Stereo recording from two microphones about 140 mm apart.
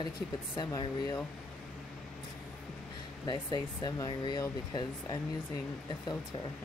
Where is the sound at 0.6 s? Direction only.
25° left (ahead or behind).